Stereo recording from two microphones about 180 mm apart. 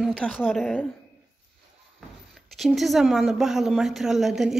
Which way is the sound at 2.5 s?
Centre (ahead or behind).